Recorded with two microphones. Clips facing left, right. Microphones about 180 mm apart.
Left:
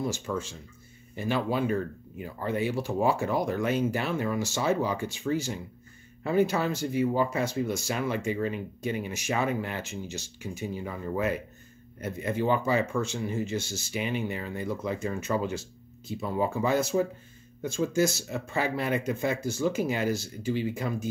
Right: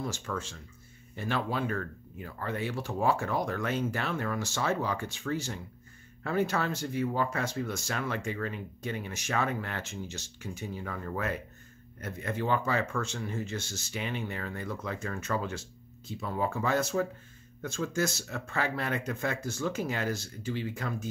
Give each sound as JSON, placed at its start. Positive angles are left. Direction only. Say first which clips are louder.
{"t": 0.3, "sound": "speech", "louder": "left 4 dB", "side_deg": 15}